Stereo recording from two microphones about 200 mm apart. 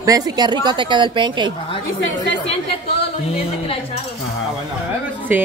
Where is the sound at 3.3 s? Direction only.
30° left (ahead or behind).